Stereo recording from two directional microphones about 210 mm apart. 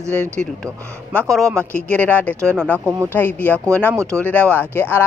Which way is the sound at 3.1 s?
10° left (ahead or behind).